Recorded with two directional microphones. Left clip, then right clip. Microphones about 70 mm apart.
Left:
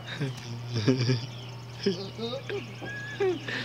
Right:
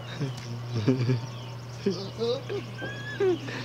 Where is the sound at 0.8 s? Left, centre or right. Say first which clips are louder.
Left 1 dB; left.